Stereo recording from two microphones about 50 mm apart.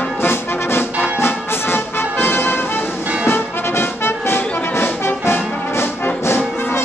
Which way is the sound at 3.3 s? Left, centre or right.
Left.